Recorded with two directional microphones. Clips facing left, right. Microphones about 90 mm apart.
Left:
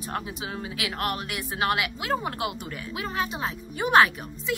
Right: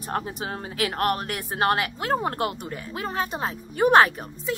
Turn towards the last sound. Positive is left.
turn(degrees=-40)  # may be behind; listen again after turning